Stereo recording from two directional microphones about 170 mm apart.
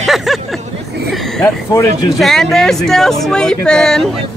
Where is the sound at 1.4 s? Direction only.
15° left (ahead or behind).